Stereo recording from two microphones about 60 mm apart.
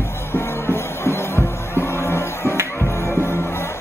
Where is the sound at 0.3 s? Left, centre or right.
Left.